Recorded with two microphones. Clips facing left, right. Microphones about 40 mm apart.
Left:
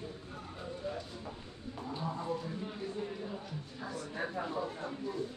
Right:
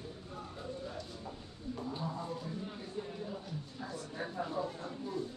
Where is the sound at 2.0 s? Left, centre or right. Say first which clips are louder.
Left 3 dB; centre.